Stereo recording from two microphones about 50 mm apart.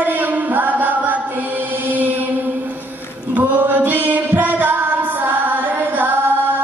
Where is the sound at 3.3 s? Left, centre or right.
Right.